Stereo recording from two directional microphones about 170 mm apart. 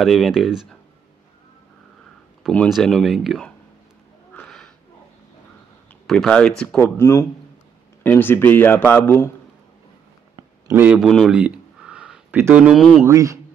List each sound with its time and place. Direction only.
0.0 s speech: centre (ahead or behind)
2.4 s speech: 5° left (ahead or behind)
4.3 s sniff: 5° left (ahead or behind)
6.0 s speech: 5° left (ahead or behind)
7.0 s speech: 15° left (ahead or behind)
10.3 s a sound: 10° right (ahead or behind)
11.0 s speech: centre (ahead or behind)
13.0 s mantra: 20° right (ahead or behind)